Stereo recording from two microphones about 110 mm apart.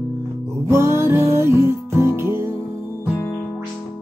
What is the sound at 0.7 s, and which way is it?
Music, 25° right (ahead or behind).